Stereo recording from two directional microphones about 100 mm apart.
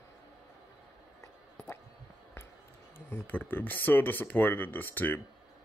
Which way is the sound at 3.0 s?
25° left (ahead or behind).